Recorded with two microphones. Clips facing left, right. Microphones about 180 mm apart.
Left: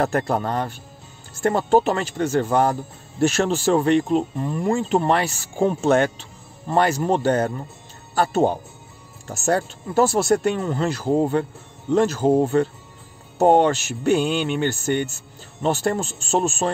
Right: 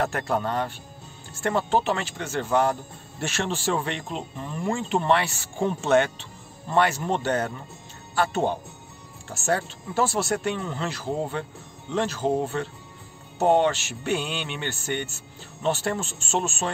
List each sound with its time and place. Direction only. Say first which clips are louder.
0.0 s speech: left 4 dB; 40° left (ahead or behind)